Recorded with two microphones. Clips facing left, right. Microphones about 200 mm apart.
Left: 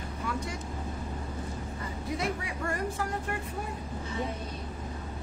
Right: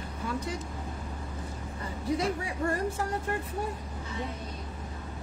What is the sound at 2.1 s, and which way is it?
Speech, 30° right (ahead or behind).